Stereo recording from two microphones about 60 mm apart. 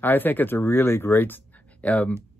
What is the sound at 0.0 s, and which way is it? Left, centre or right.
Speech, left.